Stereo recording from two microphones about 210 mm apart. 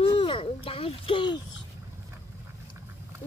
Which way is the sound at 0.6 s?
25° left (ahead or behind).